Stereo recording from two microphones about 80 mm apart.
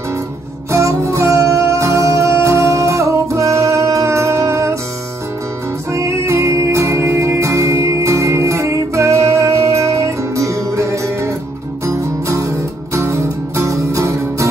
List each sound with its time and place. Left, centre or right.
0.7 s music: right
5.9 s music: right